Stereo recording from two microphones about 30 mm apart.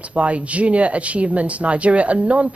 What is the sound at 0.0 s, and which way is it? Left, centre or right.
A woman's voice, right.